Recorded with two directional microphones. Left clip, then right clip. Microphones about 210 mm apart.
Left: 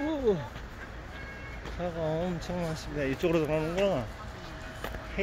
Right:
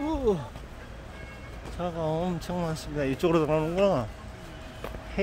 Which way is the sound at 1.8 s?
20° right (ahead or behind).